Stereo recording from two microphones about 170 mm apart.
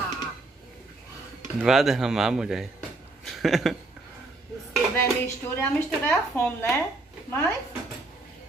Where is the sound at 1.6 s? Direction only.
Centre (ahead or behind).